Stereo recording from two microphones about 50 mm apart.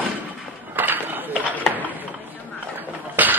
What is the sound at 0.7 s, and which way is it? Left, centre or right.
Run, right.